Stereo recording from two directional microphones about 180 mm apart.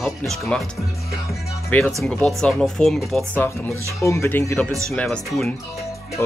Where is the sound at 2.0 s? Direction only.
5° left (ahead or behind).